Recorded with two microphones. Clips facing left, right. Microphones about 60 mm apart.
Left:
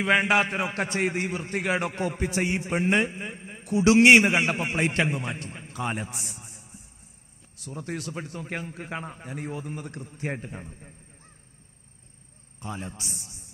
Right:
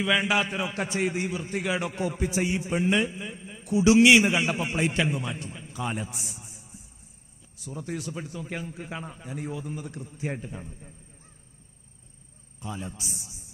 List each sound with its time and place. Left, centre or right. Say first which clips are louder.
0.0 s a man's voice: left 3 dB; left
12.5 s a man's voice: even; left